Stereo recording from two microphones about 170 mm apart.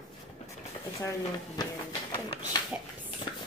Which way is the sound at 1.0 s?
15° left (ahead or behind).